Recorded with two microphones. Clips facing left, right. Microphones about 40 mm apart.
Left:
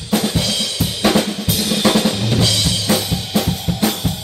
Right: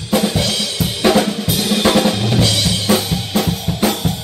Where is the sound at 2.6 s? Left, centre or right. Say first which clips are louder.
Right 2 dB; centre.